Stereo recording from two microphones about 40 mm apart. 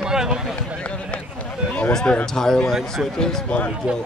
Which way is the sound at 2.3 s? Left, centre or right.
Centre.